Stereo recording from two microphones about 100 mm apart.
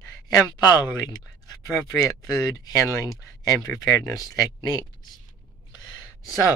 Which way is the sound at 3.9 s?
30° left (ahead or behind).